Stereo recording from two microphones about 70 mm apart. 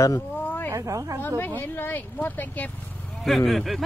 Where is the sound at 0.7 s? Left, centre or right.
Right.